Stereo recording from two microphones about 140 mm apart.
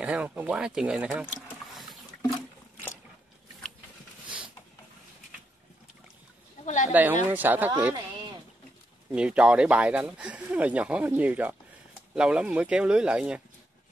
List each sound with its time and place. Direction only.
0.0 s speech: 5° right (ahead or behind)
1.8 s wild animals: centre (ahead or behind)
6.6 s a sound: 55° left (ahead or behind)
6.9 s speech: 10° right (ahead or behind)
9.1 s speech: 5° right (ahead or behind)